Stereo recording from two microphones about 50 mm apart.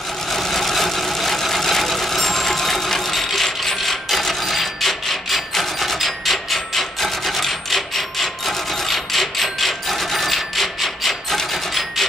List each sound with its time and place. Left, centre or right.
0.3 s vehicle: centre